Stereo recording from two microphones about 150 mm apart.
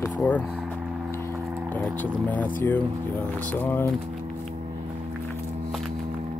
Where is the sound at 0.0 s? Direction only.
10° left (ahead or behind).